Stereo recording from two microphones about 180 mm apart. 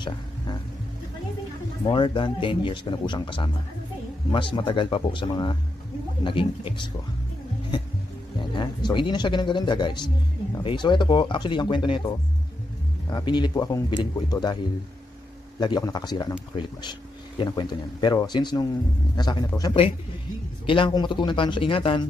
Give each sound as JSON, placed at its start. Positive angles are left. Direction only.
{"t": 1.9, "sound": "speech", "side_deg": 25}
{"t": 8.4, "sound": "speech", "side_deg": 25}
{"t": 13.1, "sound": "speech", "side_deg": 25}
{"t": 15.6, "sound": "speech", "side_deg": 25}
{"t": 17.4, "sound": "speech", "side_deg": 25}